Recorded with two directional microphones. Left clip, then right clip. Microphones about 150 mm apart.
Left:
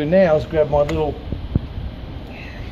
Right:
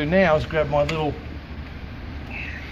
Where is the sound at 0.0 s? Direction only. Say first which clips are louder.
Left 4 dB; 70° left (ahead or behind).